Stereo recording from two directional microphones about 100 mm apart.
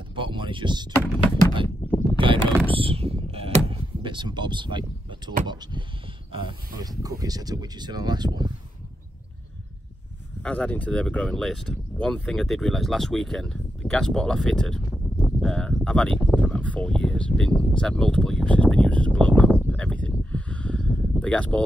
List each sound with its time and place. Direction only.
0.1 s speech: 55° right (ahead or behind)
1.8 s pulleys: 90° left
2.1 s mechanisms: 60° right (ahead or behind)
2.8 s a sound: 75° right (ahead or behind); by 5.9 s 45° right (ahead or behind)
6.8 s speech: 40° right (ahead or behind)
10.4 s speech: 15° left (ahead or behind)
14.9 s a sound: 5° right (ahead or behind)
15.5 s speech: 10° left (ahead or behind)